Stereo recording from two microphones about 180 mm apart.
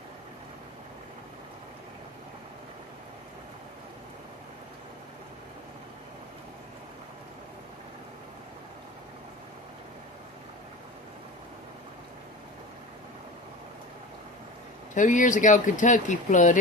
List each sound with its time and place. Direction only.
15.0 s speech: 45° left (ahead or behind)